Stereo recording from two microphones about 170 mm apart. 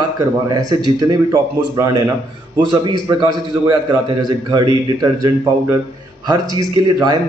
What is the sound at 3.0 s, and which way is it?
A man's voice, 20° right (ahead or behind).